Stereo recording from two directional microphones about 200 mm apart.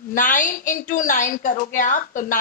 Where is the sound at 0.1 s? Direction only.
40° left (ahead or behind).